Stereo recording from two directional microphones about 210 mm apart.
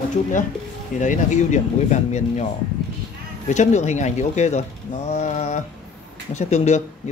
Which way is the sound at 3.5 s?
35° left (ahead or behind).